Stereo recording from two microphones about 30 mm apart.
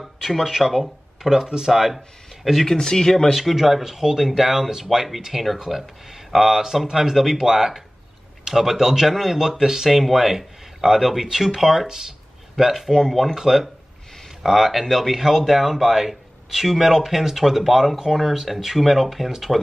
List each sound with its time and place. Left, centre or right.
0.0 s speech: centre
0.5 s speech: centre
2.6 s speech: centre
3.3 s speech: centre
3.8 s speech: centre
4.8 s speech: centre
9.4 s speech: centre
9.8 s speech: centre
12.9 s speech: centre
13.3 s speech: centre